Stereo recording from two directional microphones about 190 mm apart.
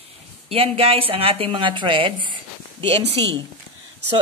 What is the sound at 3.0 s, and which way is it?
Speech, 65° right (ahead or behind).